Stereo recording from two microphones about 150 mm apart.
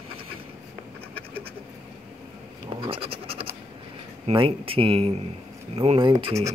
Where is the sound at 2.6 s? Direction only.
35° right (ahead or behind).